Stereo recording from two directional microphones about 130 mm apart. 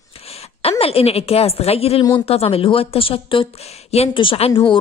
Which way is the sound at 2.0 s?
30° left (ahead or behind).